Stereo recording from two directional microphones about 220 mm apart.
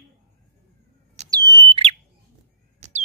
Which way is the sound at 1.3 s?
15° right (ahead or behind).